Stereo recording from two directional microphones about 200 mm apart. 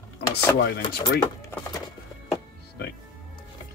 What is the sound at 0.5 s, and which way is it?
Speech, 60° left (ahead or behind).